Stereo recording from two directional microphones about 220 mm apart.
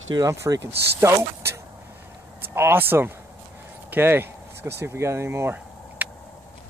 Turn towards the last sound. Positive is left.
turn(degrees=-10)  # may be behind; listen again after turning